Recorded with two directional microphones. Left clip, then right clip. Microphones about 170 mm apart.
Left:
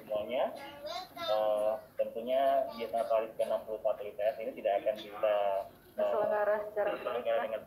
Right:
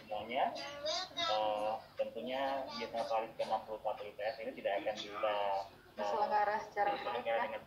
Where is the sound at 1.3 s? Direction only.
20° right (ahead or behind).